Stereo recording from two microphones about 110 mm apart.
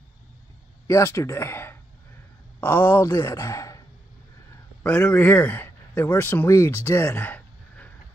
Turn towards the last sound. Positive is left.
turn(degrees=15)  # may be behind; listen again after turning